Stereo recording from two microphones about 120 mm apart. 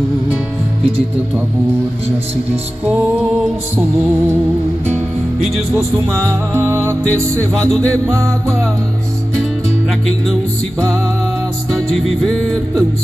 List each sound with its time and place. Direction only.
6.5 s music: 20° right (ahead or behind)
7.7 s music: 10° left (ahead or behind)
8.1 s music: 25° right (ahead or behind)
11.9 s music: 5° left (ahead or behind)